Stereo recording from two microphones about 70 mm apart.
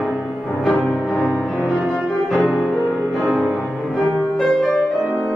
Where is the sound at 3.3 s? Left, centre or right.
Centre.